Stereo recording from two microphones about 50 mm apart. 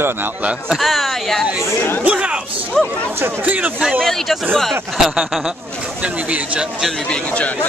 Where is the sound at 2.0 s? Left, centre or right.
Right.